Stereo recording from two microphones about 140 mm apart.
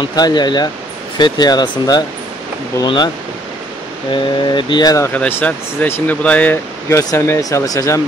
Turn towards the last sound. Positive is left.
turn(degrees=25)  # may be behind; listen again after turning